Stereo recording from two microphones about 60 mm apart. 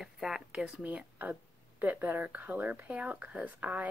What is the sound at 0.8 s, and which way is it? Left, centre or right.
Speech, right.